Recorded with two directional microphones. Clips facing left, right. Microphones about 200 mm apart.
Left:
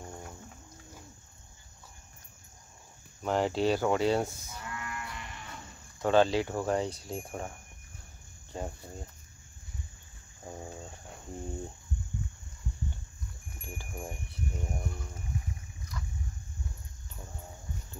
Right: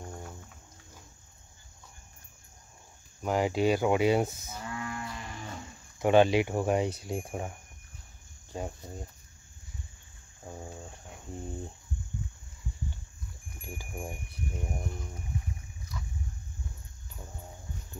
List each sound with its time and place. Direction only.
3.2 s speech: 10° right (ahead or behind)
4.7 s livestock: 30° right (ahead or behind)
5.9 s speech: 15° right (ahead or behind)
8.5 s speech: 10° right (ahead or behind)
10.4 s cricket: centre (ahead or behind)
13.6 s speech: 10° right (ahead or behind)